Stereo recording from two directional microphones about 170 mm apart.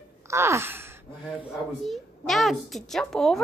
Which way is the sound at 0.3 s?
15° right (ahead or behind).